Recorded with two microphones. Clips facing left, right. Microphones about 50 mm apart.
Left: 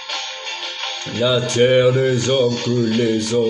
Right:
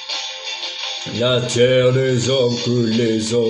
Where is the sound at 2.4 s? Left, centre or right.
Left.